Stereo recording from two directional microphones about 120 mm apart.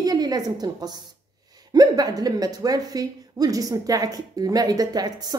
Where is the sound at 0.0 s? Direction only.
35° right (ahead or behind).